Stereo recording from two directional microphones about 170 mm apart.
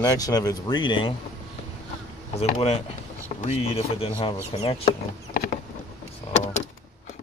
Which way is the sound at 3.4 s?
40° left (ahead or behind).